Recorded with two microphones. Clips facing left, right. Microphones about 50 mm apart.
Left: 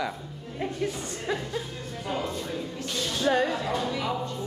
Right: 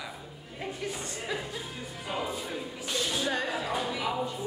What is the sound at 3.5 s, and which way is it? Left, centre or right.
Speech, centre.